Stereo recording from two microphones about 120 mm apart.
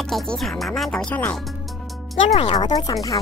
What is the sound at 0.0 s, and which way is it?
Speech, 5° left (ahead or behind).